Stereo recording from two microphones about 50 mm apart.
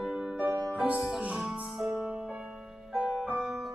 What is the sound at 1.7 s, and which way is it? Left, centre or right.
Music, centre.